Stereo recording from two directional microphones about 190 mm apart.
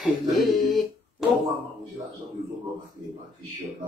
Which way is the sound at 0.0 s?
Centre (ahead or behind).